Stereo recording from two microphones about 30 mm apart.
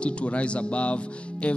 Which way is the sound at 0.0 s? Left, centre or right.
Left.